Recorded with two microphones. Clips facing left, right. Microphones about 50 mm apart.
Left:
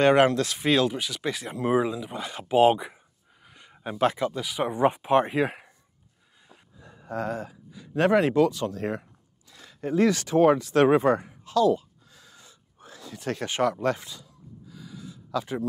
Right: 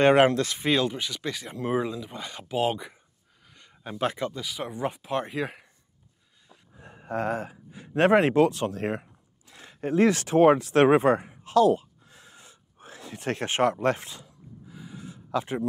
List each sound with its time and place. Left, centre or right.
0.0 s speech: centre
0.6 s speech: centre
1.2 s speech: centre
3.4 s a sound: centre
4.0 s speech: centre
4.3 s speech: centre
4.6 s speech: left
6.8 s speech: right
11.4 s a sound: right